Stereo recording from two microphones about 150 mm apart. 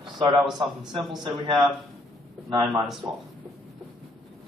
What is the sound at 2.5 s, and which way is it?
Speech, 35° right (ahead or behind).